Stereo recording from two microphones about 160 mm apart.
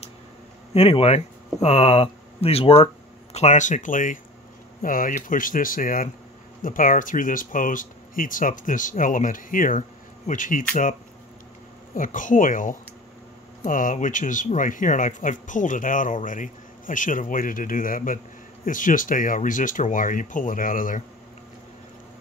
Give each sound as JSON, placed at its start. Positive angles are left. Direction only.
{"t": 0.7, "sound": "speech", "side_deg": 35}